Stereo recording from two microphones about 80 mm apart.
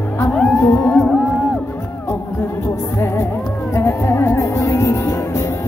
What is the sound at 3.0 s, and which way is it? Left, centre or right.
Music, left.